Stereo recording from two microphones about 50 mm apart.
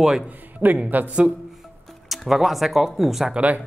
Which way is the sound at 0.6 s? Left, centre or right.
Right.